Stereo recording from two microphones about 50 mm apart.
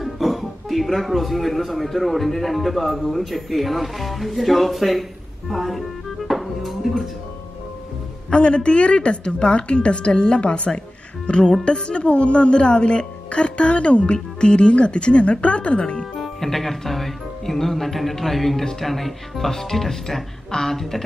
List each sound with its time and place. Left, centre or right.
0.0 s a man's voice: centre
5.5 s music: centre
8.3 s a woman's voice: left
16.2 s speech: centre